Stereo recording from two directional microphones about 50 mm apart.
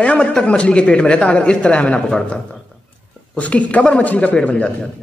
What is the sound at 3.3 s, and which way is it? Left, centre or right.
A man's voice, left.